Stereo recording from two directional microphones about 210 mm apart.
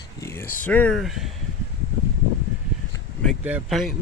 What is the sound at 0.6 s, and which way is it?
Speech, 5° left (ahead or behind).